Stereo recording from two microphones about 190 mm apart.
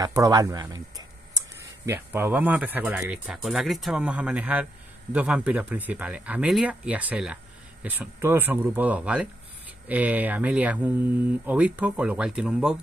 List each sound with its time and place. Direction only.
0.0 s speech: 20° right (ahead or behind)